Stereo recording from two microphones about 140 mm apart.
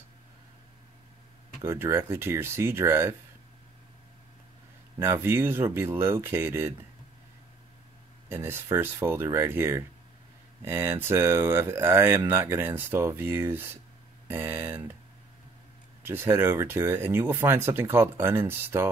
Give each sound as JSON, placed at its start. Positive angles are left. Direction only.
{"t": 1.6, "sound": "speech", "side_deg": -20}
{"t": 4.9, "sound": "speech", "side_deg": -15}
{"t": 8.3, "sound": "speech", "side_deg": -15}
{"t": 16.0, "sound": "speech", "side_deg": -15}